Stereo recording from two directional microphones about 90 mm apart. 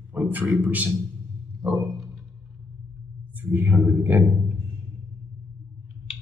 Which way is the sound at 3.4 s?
20° right (ahead or behind).